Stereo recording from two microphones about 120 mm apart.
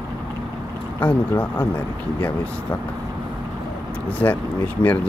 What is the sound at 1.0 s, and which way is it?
Speech, 15° left (ahead or behind).